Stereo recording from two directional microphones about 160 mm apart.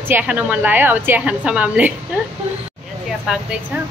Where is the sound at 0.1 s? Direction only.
10° right (ahead or behind).